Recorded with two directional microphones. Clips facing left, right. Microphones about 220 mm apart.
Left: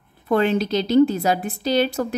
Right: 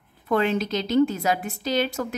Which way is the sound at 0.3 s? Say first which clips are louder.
Left 4 dB; 35° left (ahead or behind).